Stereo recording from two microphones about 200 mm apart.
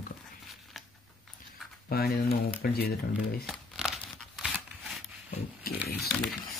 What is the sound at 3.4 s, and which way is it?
Crumpling, centre (ahead or behind).